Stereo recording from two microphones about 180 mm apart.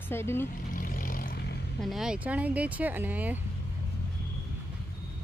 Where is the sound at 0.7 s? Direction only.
50° left (ahead or behind).